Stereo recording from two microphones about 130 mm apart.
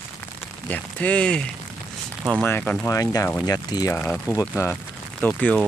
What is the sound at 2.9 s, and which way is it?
Speech, 25° left (ahead or behind).